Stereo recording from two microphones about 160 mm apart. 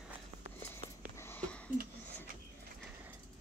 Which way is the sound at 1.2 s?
15° left (ahead or behind).